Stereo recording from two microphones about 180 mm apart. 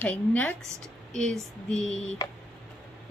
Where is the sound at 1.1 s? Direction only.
5° left (ahead or behind).